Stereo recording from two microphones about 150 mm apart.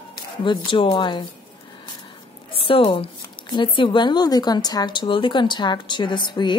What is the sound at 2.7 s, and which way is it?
A woman's voice, 35° left (ahead or behind).